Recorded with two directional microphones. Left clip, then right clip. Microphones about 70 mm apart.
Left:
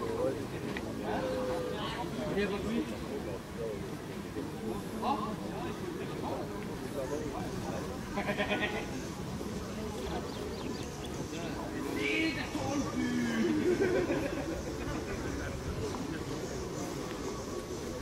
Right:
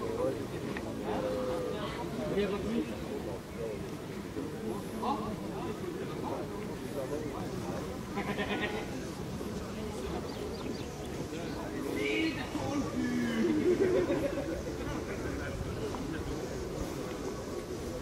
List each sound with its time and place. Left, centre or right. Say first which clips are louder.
2.3 s speech: right 1 dB; left
8.3 s sheep: left 3 dB; left
12.0 s a sound: left 1 dB; left